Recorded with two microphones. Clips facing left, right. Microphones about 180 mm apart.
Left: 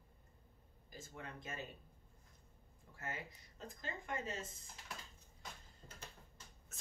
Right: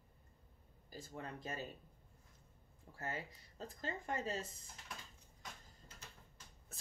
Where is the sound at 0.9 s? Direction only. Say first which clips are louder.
Right 3 dB; 35° right (ahead or behind).